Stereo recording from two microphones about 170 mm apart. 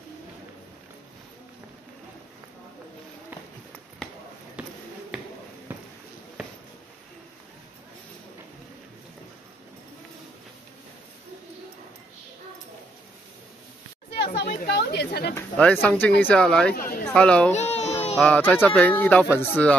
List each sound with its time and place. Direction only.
4.6 s a sound: 5° right (ahead or behind)
14.1 s chatter: 80° left
15.3 s speech: 10° left (ahead or behind)
16.7 s a sound: 60° left (ahead or behind)
17.0 s speech: 5° left (ahead or behind)
17.5 s baby cry: 40° left (ahead or behind)
18.2 s speech: 10° left (ahead or behind)